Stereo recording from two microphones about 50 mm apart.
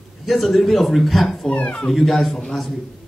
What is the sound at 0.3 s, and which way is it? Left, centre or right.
A man's voice, centre.